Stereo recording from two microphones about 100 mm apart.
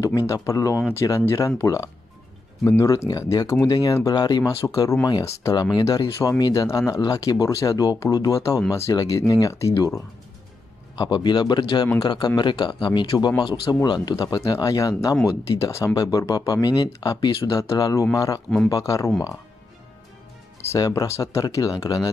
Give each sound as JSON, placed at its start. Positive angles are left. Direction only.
{"t": 0.3, "sound": "speech", "side_deg": 35}
{"t": 11.0, "sound": "speech", "side_deg": 50}
{"t": 20.6, "sound": "speech", "side_deg": 30}